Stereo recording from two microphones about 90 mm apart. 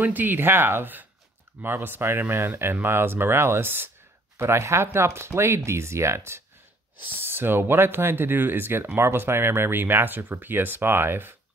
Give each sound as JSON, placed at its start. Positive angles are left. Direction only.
{"t": 0.0, "sound": "speech", "side_deg": -20}